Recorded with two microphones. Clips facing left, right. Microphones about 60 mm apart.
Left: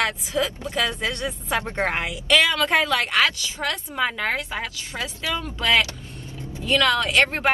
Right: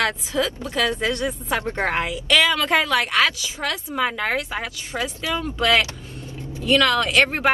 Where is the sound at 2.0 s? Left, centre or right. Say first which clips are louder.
Even; centre.